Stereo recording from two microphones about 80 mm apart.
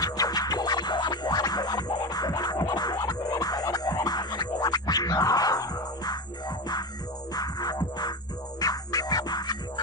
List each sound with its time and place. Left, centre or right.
0.0 s music: left
7.3 s music: left